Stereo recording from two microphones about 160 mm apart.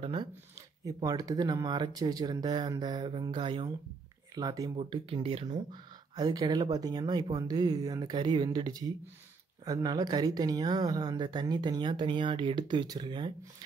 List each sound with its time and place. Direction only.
0.0 s speech: 30° right (ahead or behind)